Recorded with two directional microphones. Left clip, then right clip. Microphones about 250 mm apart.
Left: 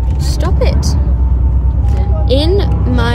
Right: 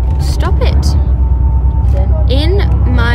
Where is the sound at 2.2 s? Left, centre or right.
Centre.